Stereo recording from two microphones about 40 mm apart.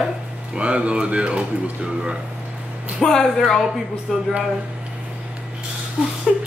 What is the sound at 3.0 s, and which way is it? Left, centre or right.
Speech, centre.